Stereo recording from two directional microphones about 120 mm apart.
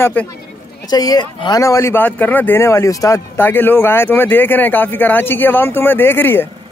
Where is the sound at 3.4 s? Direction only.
15° left (ahead or behind).